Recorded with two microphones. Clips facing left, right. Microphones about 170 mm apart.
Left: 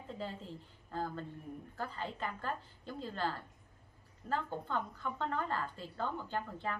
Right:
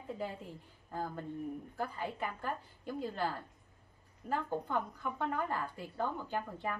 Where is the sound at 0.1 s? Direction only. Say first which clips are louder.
Right 2 dB; 15° right (ahead or behind).